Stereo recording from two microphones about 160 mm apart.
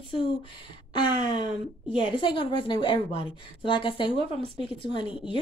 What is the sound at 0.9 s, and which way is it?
Speech, 30° left (ahead or behind).